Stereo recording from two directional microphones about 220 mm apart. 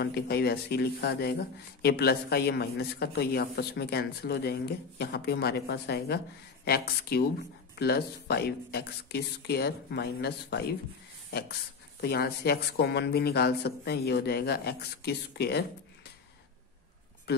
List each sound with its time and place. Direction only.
0.0 s speech: 45° left (ahead or behind)
12.0 s speech: 45° left (ahead or behind)